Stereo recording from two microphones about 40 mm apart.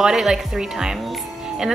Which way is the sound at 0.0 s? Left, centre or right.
Centre.